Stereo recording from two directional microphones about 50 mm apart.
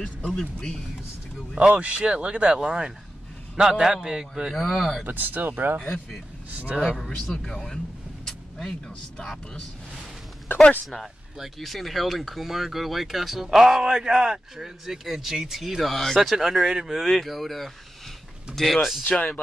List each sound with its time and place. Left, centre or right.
0.4 s speech: centre
1.6 s speech: right; by 5.0 s centre
5.0 s speech: right
5.8 s speech: centre
6.5 s speech: right
7.2 s speech: centre
8.3 s vehicle: centre
11.3 s speech: centre
17.0 s speech: centre
19.0 s speech: left